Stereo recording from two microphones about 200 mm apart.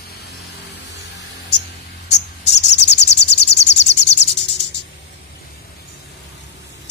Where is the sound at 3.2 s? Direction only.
55° left (ahead or behind).